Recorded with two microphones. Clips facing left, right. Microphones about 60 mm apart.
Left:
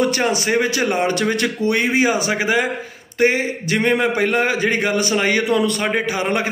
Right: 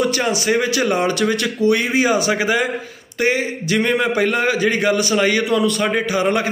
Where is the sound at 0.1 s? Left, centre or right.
Left.